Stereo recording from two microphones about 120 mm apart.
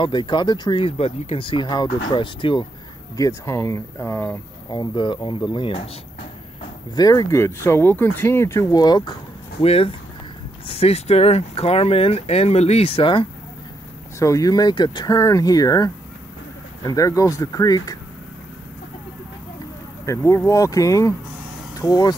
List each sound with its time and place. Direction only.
0.0 s speech: 40° left (ahead or behind)
3.2 s speech: 25° left (ahead or behind)
4.6 s speech: 40° left (ahead or behind)
7.0 s speech: 30° left (ahead or behind)
9.6 s speech: 55° left (ahead or behind)
14.2 s speech: 30° left (ahead or behind)
15.0 s speech: 25° left (ahead or behind)
20.1 s speech: 25° left (ahead or behind)